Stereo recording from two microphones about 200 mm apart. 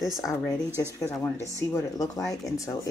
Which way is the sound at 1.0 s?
15° left (ahead or behind).